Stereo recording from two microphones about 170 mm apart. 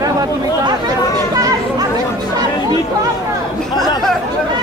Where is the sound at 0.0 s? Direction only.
20° right (ahead or behind).